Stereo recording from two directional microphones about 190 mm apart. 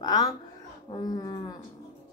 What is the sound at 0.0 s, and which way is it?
A woman's voice, 20° left (ahead or behind).